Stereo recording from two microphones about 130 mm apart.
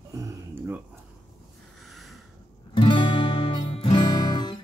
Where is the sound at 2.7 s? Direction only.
40° left (ahead or behind).